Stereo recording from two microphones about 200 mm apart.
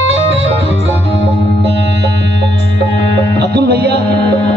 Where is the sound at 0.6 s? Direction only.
30° left (ahead or behind).